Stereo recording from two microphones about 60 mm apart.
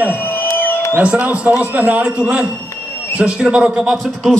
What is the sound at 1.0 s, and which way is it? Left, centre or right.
A man's voice, right.